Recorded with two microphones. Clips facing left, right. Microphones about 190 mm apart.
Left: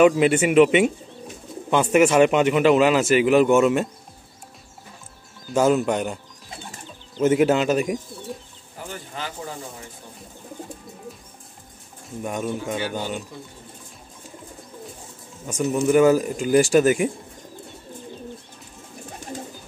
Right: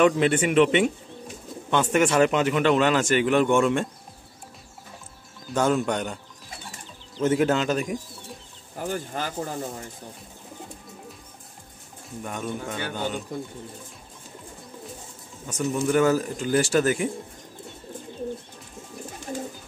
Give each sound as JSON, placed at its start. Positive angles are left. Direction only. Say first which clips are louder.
{"t": 0.0, "sound": "speech", "louder": "left 4 dB", "side_deg": 10}
{"t": 5.5, "sound": "speech", "louder": "left 4 dB", "side_deg": 5}
{"t": 7.2, "sound": "speech", "louder": "left 4 dB", "side_deg": 10}
{"t": 8.8, "sound": "speech", "louder": "right 4 dB", "side_deg": -45}
{"t": 12.2, "sound": "speech", "louder": "left 5 dB", "side_deg": 15}
{"t": 15.4, "sound": "speech", "louder": "left 4 dB", "side_deg": 10}